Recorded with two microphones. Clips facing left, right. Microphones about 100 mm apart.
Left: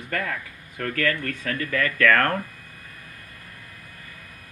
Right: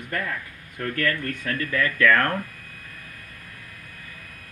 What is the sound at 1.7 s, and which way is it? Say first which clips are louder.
Speech: even; 55° left (ahead or behind).